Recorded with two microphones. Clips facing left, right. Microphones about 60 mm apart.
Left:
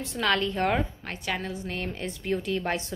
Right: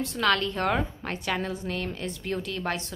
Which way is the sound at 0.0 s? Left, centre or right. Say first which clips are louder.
Right 1 dB; centre.